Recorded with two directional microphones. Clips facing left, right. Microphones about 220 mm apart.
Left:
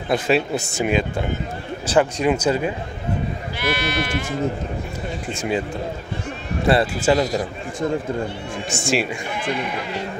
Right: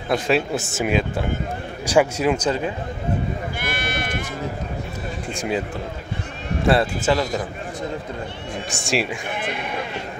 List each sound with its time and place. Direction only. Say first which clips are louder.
0.1 s speech: left 1 dB; centre (ahead or behind)
2.3 s speech: left 2 dB; 10° left (ahead or behind)
3.5 s speech: left 4 dB; 50° right (ahead or behind)
5.3 s speech: left 1 dB; centre (ahead or behind)
6.7 s speech: left 2 dB; 5° left (ahead or behind)
8.6 s speech: left 2 dB; centre (ahead or behind)